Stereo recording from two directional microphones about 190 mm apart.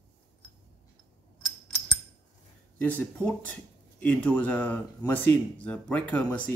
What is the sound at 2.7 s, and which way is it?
Speech, 10° left (ahead or behind).